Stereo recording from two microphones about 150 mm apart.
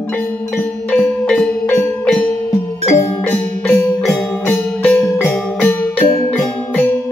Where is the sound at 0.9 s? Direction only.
5° left (ahead or behind).